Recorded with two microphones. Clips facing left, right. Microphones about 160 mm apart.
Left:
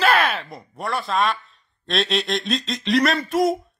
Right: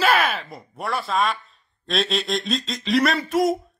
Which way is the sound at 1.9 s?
Centre (ahead or behind).